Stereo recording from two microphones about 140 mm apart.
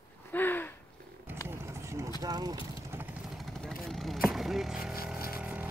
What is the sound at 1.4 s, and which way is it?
Vehicle, 20° right (ahead or behind).